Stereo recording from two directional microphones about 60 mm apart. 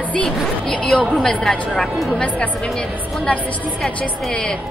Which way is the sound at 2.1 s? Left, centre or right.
Centre.